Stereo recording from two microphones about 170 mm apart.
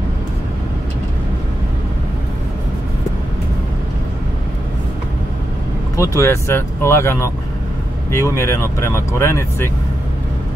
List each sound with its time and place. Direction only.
5.9 s speech: 20° left (ahead or behind)